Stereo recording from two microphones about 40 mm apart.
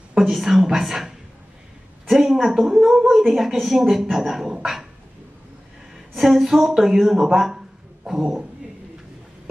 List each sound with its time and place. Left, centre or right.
0.2 s a woman's voice: centre
6.1 s a woman's voice: centre
7.5 s a sound: centre